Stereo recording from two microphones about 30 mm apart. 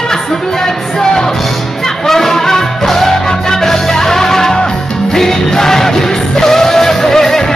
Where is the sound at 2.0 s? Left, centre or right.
Centre.